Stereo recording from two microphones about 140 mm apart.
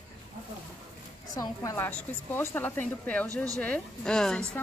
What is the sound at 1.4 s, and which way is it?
Speech, 25° left (ahead or behind).